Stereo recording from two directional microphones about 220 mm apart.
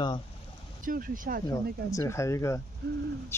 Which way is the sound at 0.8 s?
40° right (ahead or behind).